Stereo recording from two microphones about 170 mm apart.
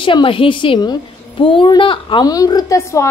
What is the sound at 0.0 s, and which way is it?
A woman's voice, 30° left (ahead or behind).